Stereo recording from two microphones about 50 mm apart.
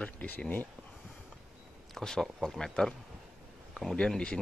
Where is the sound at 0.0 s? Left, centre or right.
Left.